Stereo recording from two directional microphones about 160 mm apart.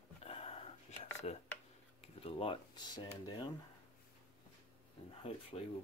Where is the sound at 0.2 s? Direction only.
40° left (ahead or behind).